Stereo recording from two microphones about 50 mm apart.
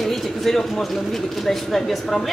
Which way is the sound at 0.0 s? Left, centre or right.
Centre.